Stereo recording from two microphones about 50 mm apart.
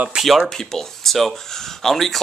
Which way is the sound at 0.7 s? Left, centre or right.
Centre.